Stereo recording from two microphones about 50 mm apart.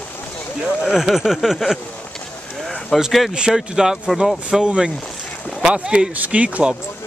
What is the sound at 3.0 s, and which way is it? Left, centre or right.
Speech, centre.